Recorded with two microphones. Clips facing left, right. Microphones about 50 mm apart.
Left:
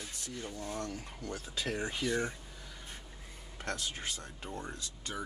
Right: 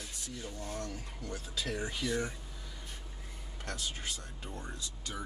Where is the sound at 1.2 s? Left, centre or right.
Left.